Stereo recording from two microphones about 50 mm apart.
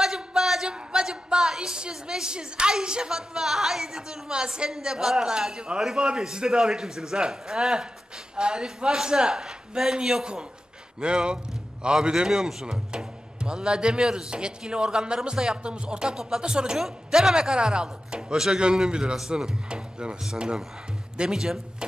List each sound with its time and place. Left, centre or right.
0.0 s a sound: centre
0.7 s a woman's voice: centre
21.2 s a woman's voice: centre